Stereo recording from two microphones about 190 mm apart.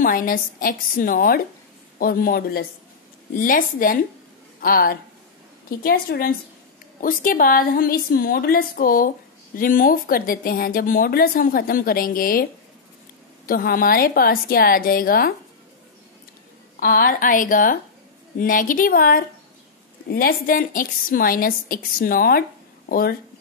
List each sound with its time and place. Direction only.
0.0 s speech: 45° left (ahead or behind)
13.5 s speech: 50° left (ahead or behind)
16.8 s speech: 50° left (ahead or behind)